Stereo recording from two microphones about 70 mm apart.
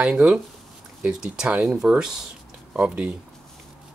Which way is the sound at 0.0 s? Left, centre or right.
Centre.